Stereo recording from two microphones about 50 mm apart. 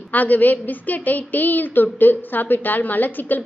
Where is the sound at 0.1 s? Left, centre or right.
Left.